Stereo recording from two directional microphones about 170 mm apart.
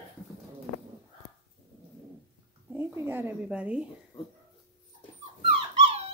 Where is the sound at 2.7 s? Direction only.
15° right (ahead or behind).